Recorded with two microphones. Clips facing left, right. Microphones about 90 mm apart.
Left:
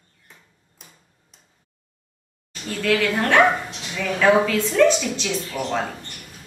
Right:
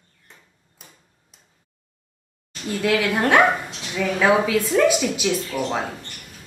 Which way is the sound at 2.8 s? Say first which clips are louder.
Even; 15° right (ahead or behind).